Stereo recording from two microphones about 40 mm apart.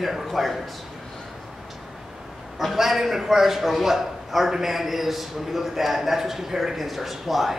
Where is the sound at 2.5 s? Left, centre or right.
Centre.